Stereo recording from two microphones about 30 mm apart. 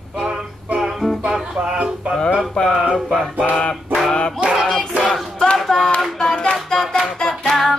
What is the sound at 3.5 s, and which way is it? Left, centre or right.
Music, left.